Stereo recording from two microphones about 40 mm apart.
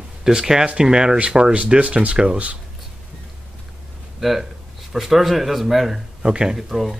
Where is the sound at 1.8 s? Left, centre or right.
Right.